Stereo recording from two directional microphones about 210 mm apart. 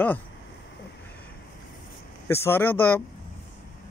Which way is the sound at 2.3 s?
10° left (ahead or behind).